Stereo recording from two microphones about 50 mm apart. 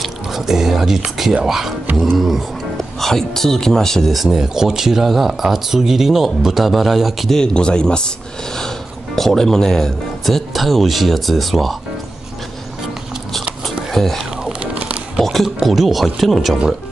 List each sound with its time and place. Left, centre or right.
0.0 s speech: centre
7.3 s speech: centre
13.9 s speech: centre
14.4 s music: right
15.2 s speech: centre